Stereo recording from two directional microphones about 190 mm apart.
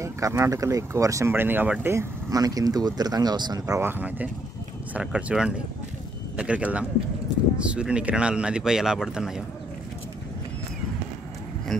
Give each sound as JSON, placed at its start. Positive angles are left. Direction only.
{"t": 0.0, "sound": "speech", "side_deg": -15}